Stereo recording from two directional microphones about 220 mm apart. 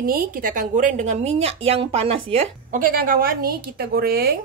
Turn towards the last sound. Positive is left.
turn(degrees=-45)  # may be behind; listen again after turning